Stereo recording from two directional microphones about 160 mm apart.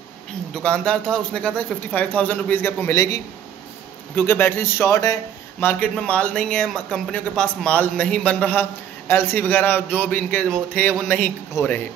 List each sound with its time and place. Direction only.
0.6 s a man's voice: 5° left (ahead or behind)
11.6 s speech: 20° left (ahead or behind)